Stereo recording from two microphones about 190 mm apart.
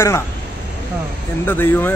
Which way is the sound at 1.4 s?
10° left (ahead or behind).